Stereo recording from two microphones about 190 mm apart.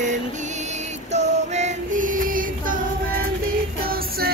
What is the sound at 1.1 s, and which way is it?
Female singing, 35° right (ahead or behind).